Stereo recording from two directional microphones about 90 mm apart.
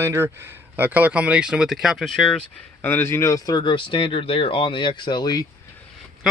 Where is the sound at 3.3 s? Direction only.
45° left (ahead or behind).